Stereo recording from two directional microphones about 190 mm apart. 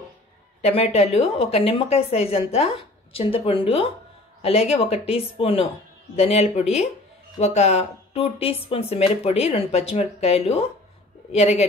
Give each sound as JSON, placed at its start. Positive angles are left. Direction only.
{"t": 0.6, "sound": "speech", "side_deg": 35}